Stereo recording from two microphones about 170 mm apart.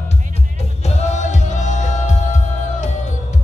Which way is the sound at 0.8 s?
45° left (ahead or behind).